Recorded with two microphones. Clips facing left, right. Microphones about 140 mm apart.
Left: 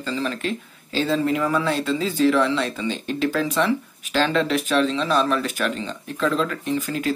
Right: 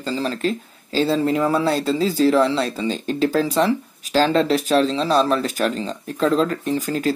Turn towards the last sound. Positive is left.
turn(degrees=-40)  # may be behind; listen again after turning